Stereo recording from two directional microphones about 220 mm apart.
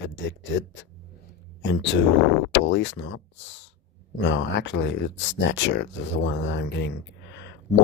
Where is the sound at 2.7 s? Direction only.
55° left (ahead or behind).